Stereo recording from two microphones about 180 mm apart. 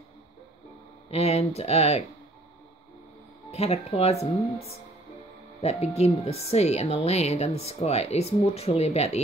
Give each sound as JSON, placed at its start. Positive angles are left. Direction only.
{"t": 1.1, "sound": "speech", "side_deg": 35}
{"t": 3.5, "sound": "speech", "side_deg": 35}